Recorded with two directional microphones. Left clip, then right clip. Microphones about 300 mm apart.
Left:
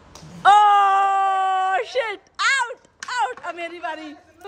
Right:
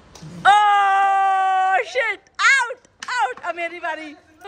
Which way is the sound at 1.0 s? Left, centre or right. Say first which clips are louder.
Right 2 dB; centre.